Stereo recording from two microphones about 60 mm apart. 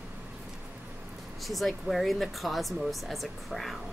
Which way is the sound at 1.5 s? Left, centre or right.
Centre.